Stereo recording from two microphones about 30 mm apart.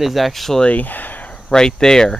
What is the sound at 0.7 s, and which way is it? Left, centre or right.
Speech, left.